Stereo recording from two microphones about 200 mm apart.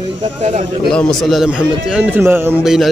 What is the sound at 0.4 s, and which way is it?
Speech, 35° right (ahead or behind).